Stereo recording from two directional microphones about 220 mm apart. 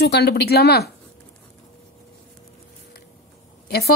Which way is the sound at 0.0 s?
45° left (ahead or behind).